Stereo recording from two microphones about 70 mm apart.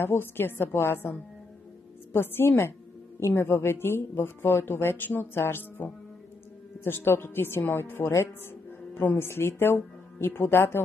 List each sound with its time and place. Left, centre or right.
0.0 s speech: left
2.1 s speech: left